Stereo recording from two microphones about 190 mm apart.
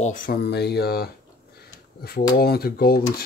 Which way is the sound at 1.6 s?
55° left (ahead or behind).